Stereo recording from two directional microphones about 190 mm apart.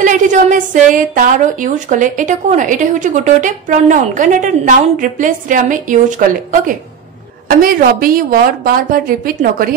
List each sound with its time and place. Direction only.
0.0 s a woman's voice: 40° right (ahead or behind)